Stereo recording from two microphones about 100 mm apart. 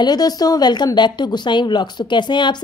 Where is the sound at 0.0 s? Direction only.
40° left (ahead or behind).